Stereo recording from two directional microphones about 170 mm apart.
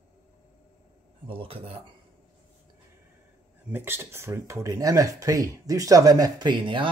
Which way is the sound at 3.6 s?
15° right (ahead or behind).